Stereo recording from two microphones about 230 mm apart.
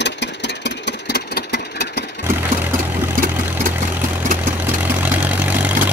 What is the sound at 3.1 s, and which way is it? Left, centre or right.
Vehicle, right.